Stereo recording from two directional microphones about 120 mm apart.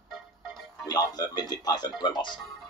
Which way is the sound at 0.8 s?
35° left (ahead or behind).